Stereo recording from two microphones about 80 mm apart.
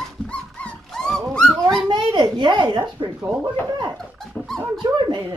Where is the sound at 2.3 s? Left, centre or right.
Right.